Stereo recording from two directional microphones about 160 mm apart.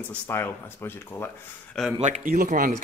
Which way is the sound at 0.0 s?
15° left (ahead or behind).